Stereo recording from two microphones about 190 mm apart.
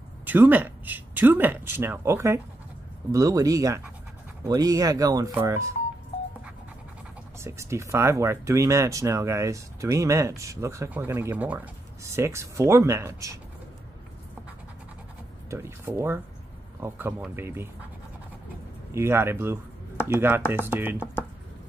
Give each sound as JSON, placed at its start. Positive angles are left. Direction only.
{"t": 0.2, "sound": "speech", "side_deg": -10}
{"t": 7.3, "sound": "speech", "side_deg": -15}
{"t": 15.5, "sound": "speech", "side_deg": -15}
{"t": 18.9, "sound": "speech", "side_deg": -15}